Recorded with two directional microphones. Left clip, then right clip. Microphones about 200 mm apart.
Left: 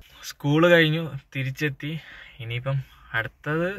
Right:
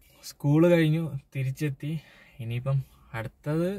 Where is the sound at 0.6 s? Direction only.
50° left (ahead or behind).